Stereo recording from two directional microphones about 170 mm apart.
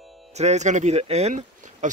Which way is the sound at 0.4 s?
40° right (ahead or behind).